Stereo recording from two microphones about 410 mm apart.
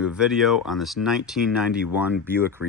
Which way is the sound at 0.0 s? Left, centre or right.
Centre.